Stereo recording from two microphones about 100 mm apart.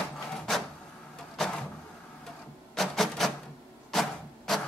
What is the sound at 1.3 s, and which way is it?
Vehicle, 5° left (ahead or behind).